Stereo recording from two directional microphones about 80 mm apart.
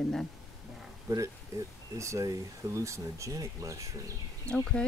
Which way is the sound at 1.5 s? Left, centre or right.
Right.